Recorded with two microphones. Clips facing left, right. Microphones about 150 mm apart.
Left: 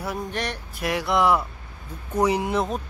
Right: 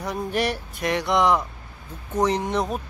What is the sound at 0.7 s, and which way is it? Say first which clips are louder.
Speech: even; 5° left (ahead or behind).